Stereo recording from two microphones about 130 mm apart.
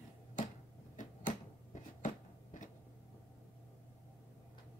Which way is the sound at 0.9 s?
75° left (ahead or behind).